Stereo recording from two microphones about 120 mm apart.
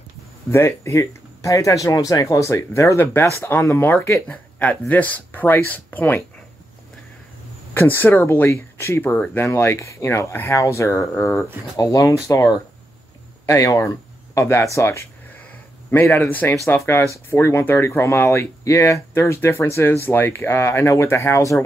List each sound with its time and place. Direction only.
0.5 s speech: 20° left (ahead or behind)
7.7 s speech: 15° left (ahead or behind)
11.7 s speech: 30° left (ahead or behind)